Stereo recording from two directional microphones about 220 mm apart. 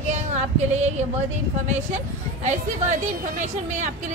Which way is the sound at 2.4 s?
35° right (ahead or behind).